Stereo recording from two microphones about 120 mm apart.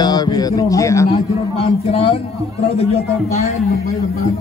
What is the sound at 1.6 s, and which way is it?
Speech, 55° left (ahead or behind).